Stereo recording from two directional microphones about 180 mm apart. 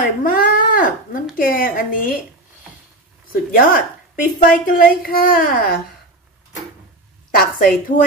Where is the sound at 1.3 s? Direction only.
50° left (ahead or behind).